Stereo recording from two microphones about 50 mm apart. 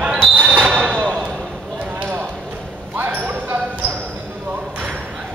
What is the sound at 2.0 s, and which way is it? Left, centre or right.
Run, right.